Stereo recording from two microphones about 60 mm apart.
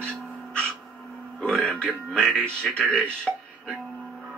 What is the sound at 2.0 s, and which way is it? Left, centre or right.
Speech, centre.